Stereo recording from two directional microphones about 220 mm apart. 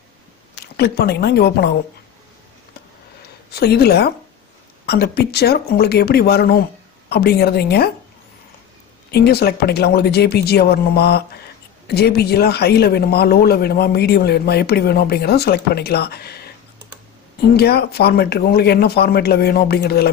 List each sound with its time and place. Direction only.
0.7 s a man's voice: 45° left (ahead or behind)
3.5 s a man's voice: 45° left (ahead or behind)
9.1 s a man's voice: 45° left (ahead or behind)
17.6 s a man's voice: 45° left (ahead or behind)